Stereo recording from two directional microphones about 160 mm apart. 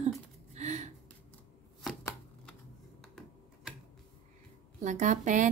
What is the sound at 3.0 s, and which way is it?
Computer keyboard, centre (ahead or behind).